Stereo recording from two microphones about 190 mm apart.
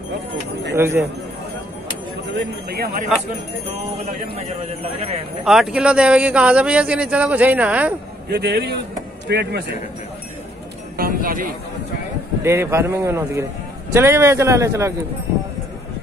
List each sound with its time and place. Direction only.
0.7 s a man's voice: 10° right (ahead or behind)
2.3 s speech: 55° right (ahead or behind)
4.0 s speech: 35° right (ahead or behind)
5.4 s a man's voice: 5° right (ahead or behind)
8.3 s speech: 60° right (ahead or behind)
11.0 s speech: 50° right (ahead or behind)
12.4 s a man's voice: 15° right (ahead or behind)